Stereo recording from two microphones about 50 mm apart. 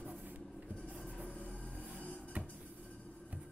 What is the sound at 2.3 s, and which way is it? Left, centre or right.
Music, right.